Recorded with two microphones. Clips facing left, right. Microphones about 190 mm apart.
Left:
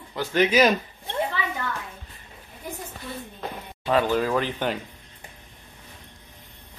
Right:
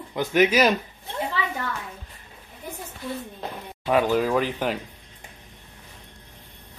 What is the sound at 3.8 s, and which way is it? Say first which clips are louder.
Speech: right 1 dB; 10° right (ahead or behind).